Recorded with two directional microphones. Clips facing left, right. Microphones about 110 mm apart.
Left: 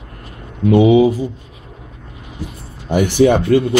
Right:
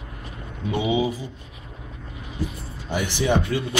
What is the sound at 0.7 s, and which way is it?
Speech, 65° left (ahead or behind).